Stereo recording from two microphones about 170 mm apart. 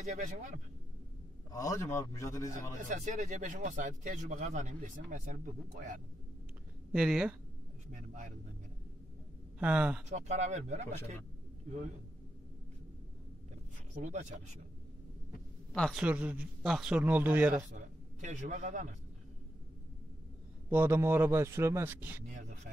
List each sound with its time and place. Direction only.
0.0 s speech: 45° right (ahead or behind)
1.5 s a man's voice: 20° left (ahead or behind)
2.8 s speech: 45° right (ahead or behind)
6.9 s speech: 5° right (ahead or behind)
9.6 s a man's voice: 10° right (ahead or behind)
10.0 s speech: 40° right (ahead or behind)
15.7 s speech: 5° left (ahead or behind)
16.0 s a man's voice: 10° right (ahead or behind)
18.2 s speech: 45° right (ahead or behind)
20.7 s a man's voice: 15° right (ahead or behind)
22.3 s speech: 45° right (ahead or behind)